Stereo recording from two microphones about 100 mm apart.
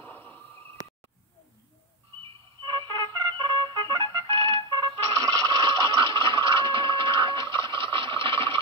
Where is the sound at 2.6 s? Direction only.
45° right (ahead or behind).